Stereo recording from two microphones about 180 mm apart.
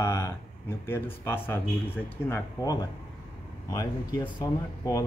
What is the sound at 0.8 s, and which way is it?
Speech, 15° left (ahead or behind).